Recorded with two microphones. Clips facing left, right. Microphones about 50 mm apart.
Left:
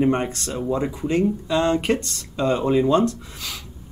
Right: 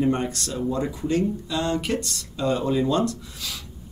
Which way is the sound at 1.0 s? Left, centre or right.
Left.